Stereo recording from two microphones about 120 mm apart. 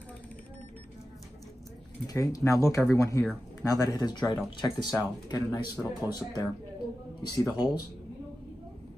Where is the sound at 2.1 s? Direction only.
30° left (ahead or behind).